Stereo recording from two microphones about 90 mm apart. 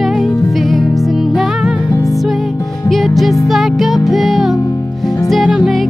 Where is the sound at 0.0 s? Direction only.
Centre (ahead or behind).